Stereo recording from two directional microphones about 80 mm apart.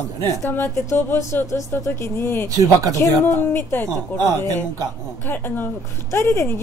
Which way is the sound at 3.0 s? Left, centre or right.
Left.